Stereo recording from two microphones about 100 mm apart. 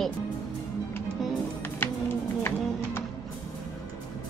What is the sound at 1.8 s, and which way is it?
Music, 20° left (ahead or behind).